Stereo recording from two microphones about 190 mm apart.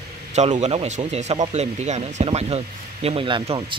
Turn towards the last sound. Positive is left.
turn(degrees=-25)  # may be behind; listen again after turning